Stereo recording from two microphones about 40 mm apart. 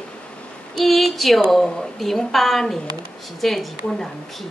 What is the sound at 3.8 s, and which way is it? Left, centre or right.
Speech, centre.